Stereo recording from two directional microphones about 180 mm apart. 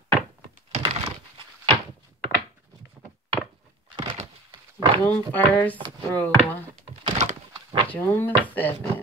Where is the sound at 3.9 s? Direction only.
25° right (ahead or behind).